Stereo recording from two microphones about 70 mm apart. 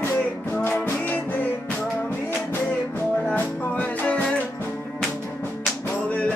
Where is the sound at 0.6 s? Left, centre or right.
Left.